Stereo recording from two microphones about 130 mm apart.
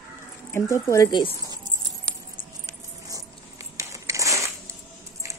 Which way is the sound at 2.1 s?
20° right (ahead or behind).